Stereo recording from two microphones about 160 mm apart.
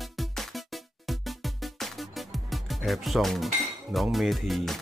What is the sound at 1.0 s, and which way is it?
Music, centre (ahead or behind).